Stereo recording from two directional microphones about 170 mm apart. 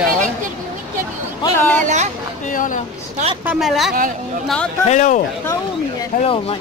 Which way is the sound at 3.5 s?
Centre (ahead or behind).